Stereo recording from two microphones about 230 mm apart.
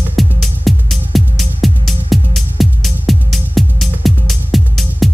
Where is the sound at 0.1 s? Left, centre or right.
Centre.